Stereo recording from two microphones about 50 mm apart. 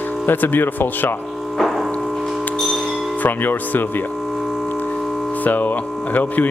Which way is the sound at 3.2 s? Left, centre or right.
Left.